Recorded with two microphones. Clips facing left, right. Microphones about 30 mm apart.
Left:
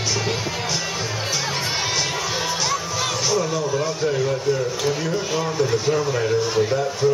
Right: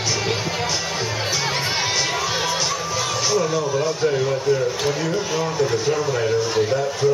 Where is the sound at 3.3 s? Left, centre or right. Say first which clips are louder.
Right 3 dB; centre.